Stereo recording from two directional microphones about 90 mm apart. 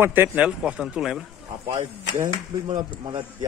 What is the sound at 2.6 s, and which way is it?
Speech, 65° right (ahead or behind).